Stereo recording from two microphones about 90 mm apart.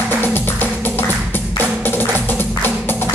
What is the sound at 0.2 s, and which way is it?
Music, 20° left (ahead or behind).